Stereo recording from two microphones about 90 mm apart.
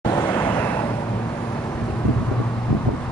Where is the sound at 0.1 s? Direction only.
40° left (ahead or behind).